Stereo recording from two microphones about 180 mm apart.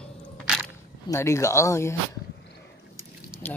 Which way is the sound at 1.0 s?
15° left (ahead or behind).